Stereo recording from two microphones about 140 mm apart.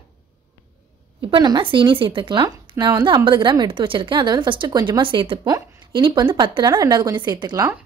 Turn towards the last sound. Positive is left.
turn(degrees=-30)  # may be behind; listen again after turning